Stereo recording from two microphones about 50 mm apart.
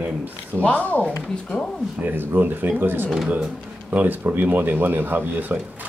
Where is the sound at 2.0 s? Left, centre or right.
Right.